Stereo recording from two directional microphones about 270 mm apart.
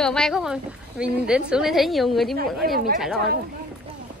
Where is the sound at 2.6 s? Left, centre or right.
Right.